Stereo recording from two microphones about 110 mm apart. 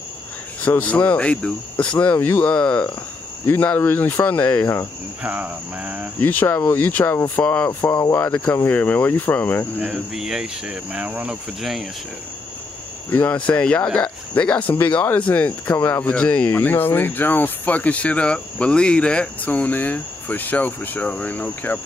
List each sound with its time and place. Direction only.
0.7 s speech: 15° left (ahead or behind)
5.2 s speech: 10° right (ahead or behind)
6.2 s speech: 20° left (ahead or behind)
7.9 s speech: 30° left (ahead or behind)
8.2 s speech: 15° left (ahead or behind)
9.8 s speech: 5° right (ahead or behind)
13.1 s speech: 15° left (ahead or behind)